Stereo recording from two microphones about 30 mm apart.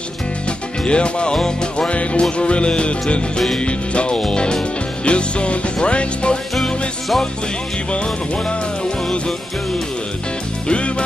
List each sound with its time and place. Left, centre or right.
0.8 s music: left
1.3 s music: left
1.9 s music: left
7.9 s music: left
10.7 s music: left